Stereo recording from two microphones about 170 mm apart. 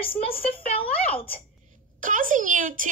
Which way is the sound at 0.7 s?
35° left (ahead or behind).